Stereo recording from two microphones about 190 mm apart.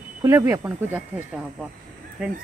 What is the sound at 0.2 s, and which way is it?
Speech, 15° right (ahead or behind).